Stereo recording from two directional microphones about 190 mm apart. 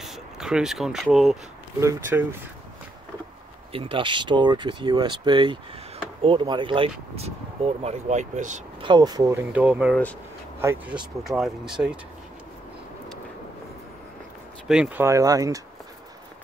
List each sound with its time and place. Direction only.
0.0 s speech: centre (ahead or behind)
1.8 s speech: 15° right (ahead or behind)
3.7 s speech: 30° right (ahead or behind)
8.8 s speech: 20° right (ahead or behind)
9.5 s speech: 5° right (ahead or behind)
11.2 s speech: centre (ahead or behind)
14.7 s speech: 5° right (ahead or behind)